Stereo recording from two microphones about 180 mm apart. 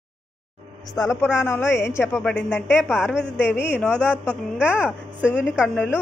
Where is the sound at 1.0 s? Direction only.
15° left (ahead or behind).